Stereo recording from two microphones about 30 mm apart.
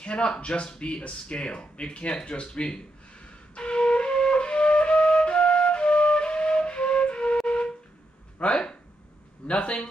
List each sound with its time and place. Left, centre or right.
0.0 s speech: left
3.5 s flute: left
7.4 s a sound: left
8.4 s speech: left